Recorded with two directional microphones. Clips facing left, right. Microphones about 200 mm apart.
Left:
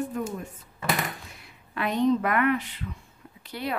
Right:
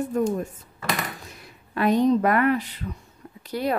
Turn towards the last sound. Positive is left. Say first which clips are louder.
# right 7 dB
turn(degrees=-40)  # may be behind; listen again after turning